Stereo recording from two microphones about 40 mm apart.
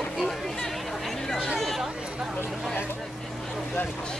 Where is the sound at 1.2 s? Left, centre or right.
Centre.